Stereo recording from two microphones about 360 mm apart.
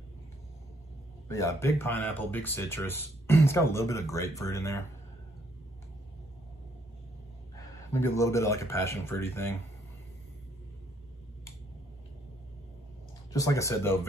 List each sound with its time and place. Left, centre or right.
1.3 s speech: centre
7.9 s speech: centre
13.3 s speech: centre